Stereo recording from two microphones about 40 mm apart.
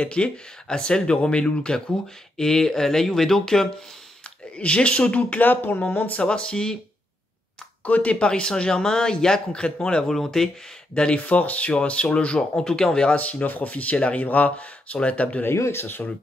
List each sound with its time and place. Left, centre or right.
0.0 s speech: left
2.3 s speech: centre
4.6 s speech: left
5.4 s speech: left
6.2 s speech: left
7.8 s speech: left
10.0 s speech: centre
11.1 s speech: left
12.5 s speech: centre
13.1 s speech: left
15.4 s speech: left